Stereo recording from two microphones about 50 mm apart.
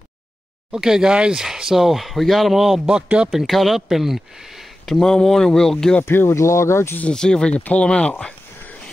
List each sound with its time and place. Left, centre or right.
0.7 s speech: centre
5.0 s speech: centre
6.0 s speech: left
7.1 s speech: centre
7.5 s speech: left